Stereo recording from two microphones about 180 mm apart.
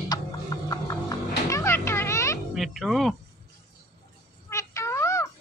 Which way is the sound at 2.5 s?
Centre (ahead or behind).